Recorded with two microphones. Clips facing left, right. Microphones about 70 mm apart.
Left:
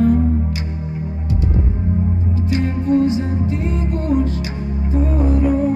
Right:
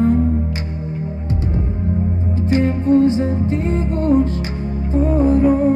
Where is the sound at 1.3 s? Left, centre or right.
Right.